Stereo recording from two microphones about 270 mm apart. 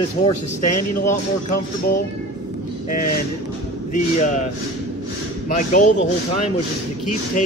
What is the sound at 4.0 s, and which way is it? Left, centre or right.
Speech, left.